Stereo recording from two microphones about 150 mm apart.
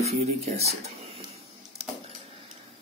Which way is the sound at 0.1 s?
45° right (ahead or behind).